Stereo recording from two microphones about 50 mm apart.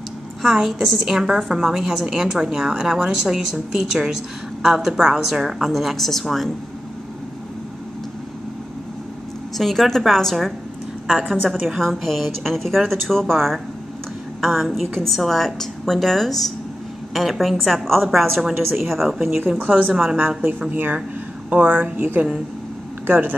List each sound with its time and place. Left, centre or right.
0.4 s a woman's voice: centre
9.6 s a woman's voice: centre
19.6 s speech: right
19.9 s speech: centre
20.7 s speech: right